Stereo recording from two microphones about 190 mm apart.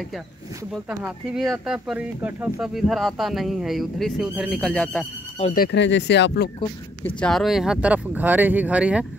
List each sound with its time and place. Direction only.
0.7 s speech: 5° right (ahead or behind)
5.5 s speech: 55° left (ahead or behind)
7.2 s speech: centre (ahead or behind)